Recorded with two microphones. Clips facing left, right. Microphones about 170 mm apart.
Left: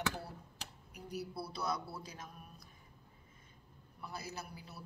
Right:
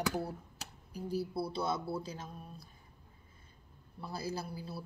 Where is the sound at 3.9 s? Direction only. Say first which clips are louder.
Right 7 dB; 30° right (ahead or behind).